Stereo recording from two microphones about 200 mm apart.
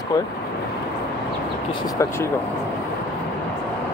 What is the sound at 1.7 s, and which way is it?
Speech, 20° left (ahead or behind).